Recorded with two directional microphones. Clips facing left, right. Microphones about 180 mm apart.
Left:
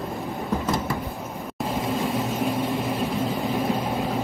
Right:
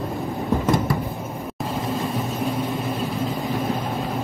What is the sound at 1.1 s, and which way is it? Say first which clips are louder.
Vehicle: right 2 dB; centre (ahead or behind).